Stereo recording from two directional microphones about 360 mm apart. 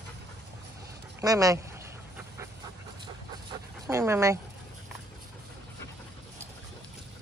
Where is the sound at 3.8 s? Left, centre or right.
Centre.